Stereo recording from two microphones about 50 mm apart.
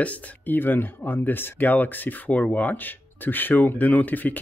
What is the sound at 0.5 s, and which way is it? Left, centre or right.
Speech, left.